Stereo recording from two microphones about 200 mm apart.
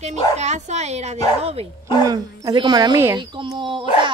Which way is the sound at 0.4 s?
35° right (ahead or behind).